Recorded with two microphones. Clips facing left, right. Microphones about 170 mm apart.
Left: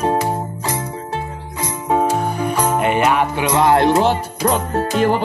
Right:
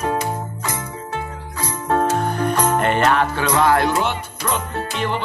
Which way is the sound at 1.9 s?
10° left (ahead or behind).